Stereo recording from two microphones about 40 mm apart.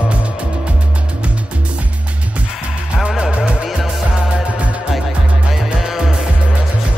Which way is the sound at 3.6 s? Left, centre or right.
Centre.